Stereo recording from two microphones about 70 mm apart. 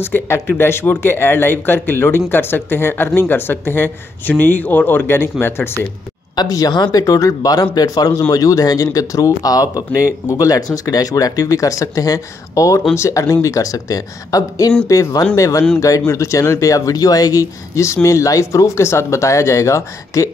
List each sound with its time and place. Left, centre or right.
0.0 s a man's voice: left
6.3 s speech: left